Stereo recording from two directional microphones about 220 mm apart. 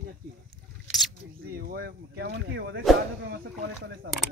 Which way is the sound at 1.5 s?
45° right (ahead or behind).